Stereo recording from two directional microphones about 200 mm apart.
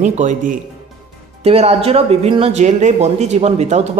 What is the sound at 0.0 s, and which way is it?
Speech, 35° right (ahead or behind).